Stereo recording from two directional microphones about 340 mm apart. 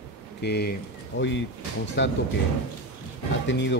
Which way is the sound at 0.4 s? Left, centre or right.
Left.